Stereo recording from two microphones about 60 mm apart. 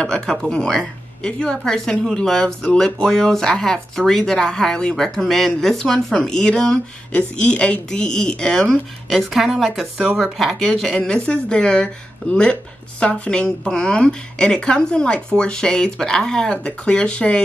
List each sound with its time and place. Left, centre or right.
0.0 s a woman's voice: centre
9.1 s a woman's voice: centre
11.2 s a woman's voice: centre